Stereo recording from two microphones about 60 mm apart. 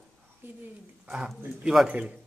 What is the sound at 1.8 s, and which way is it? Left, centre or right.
Speech, right.